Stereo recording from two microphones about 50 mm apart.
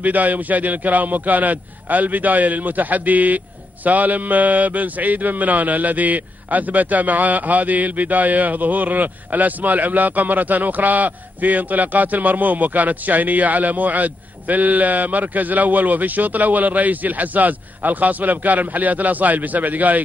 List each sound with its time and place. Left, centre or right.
0.0 s a man's voice: right